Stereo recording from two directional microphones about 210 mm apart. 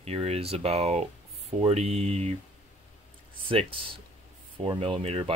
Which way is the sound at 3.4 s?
25° right (ahead or behind).